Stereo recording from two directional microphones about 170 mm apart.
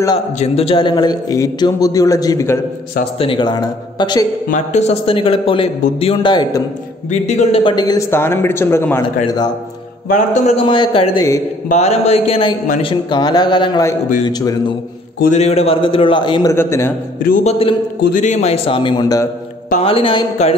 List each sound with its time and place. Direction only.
0.4 s a man's voice: 35° left (ahead or behind); by 2.6 s 20° left (ahead or behind)
3.2 s a man's voice: 30° left (ahead or behind)
4.5 s a man's voice: 45° left (ahead or behind); by 6.6 s 25° left (ahead or behind)
7.1 s a man's voice: 40° left (ahead or behind)
7.7 s speech: 20° left (ahead or behind)
9.0 s a man's voice: 25° left (ahead or behind)
10.0 s a man's voice: 45° left (ahead or behind); by 14.6 s 20° left (ahead or behind)
15.3 s a man's voice: 40° left (ahead or behind)
16.5 s speech: 15° left (ahead or behind)
17.2 s speech: 55° left (ahead or behind)
17.5 s a man's voice: 35° left (ahead or behind)
18.1 s a man's voice: 45° left (ahead or behind)